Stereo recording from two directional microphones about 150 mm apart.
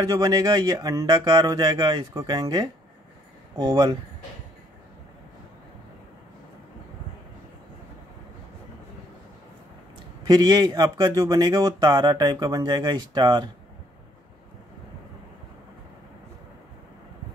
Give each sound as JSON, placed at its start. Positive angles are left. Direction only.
{"t": 0.0, "sound": "speech", "side_deg": -25}
{"t": 10.2, "sound": "speech", "side_deg": -25}